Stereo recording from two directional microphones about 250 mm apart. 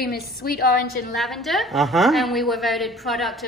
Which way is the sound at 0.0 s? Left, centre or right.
Left.